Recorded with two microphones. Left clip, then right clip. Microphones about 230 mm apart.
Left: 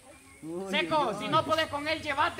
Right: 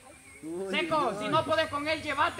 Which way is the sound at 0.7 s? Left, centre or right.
Left.